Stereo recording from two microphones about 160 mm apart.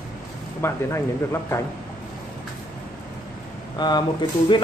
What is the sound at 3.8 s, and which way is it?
Speech, 25° left (ahead or behind).